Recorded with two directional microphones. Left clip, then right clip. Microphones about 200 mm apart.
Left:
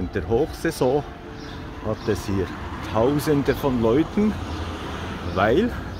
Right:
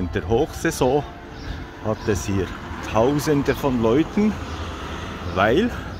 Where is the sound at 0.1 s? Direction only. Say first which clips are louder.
Right 1 dB; 15° right (ahead or behind).